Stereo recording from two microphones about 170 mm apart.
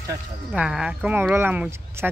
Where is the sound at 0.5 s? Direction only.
5° right (ahead or behind).